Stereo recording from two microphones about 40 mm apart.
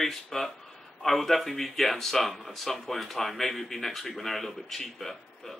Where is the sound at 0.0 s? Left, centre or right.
Centre.